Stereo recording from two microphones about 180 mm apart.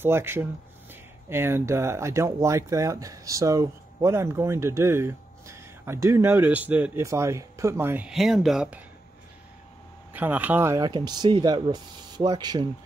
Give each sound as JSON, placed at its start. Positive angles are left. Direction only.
{"t": 0.0, "sound": "speech", "side_deg": -15}
{"t": 10.1, "sound": "speech", "side_deg": -10}